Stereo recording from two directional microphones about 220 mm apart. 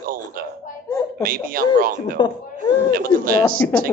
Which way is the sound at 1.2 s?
40° right (ahead or behind).